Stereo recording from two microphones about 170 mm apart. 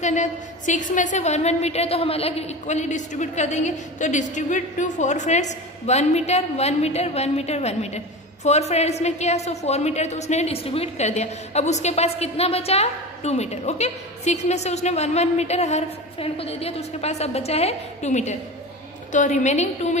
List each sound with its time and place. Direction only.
0.0 s a woman's voice: 45° left (ahead or behind)